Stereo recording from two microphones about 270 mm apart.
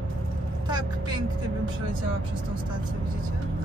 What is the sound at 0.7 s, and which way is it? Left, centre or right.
Vehicle, centre.